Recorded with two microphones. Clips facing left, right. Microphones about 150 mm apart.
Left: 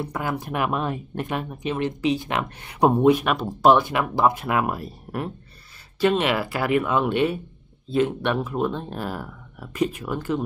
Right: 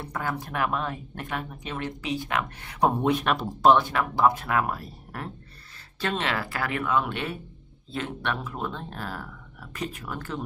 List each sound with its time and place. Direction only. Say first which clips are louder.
0.0 s speech: left 4 dB; 15° left (ahead or behind)